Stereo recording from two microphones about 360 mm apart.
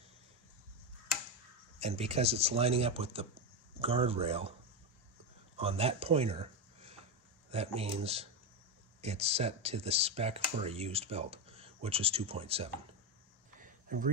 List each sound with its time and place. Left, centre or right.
1.8 s speech: centre
5.6 s speech: centre
13.6 s a sound: right